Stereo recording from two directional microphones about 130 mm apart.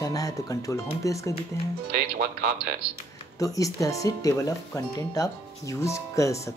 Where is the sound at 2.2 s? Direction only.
90° right.